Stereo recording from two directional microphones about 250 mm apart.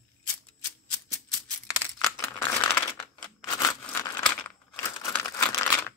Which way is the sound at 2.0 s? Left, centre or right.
Centre.